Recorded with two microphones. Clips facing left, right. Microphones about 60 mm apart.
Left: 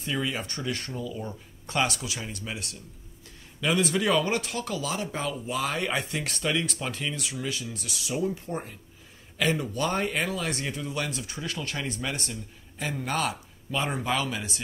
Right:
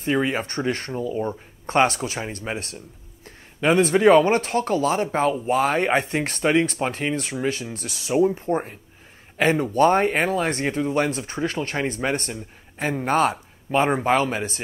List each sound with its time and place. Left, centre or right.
0.0 s speech: right